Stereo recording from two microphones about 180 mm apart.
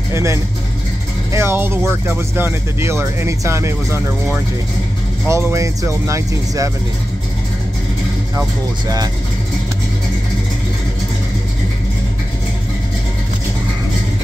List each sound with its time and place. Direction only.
0.1 s speech: 15° right (ahead or behind)
5.2 s speech: 15° right (ahead or behind)
8.4 s music: 20° right (ahead or behind)